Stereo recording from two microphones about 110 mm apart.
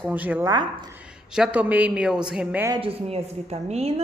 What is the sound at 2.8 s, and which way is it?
A woman's voice, 70° right (ahead or behind).